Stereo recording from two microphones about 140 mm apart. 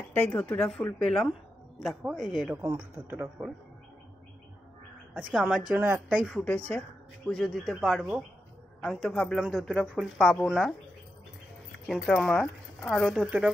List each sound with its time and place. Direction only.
0.1 s a woman's voice: 15° left (ahead or behind); by 2.5 s 5° right (ahead or behind)
2.5 s speech: 20° right (ahead or behind)
5.1 s a woman's voice: 5° right (ahead or behind)
6.3 s a woman's voice: 10° left (ahead or behind)
11.9 s a woman's voice: centre (ahead or behind)